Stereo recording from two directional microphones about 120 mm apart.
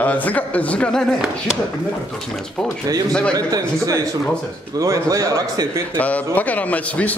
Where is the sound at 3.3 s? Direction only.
30° right (ahead or behind).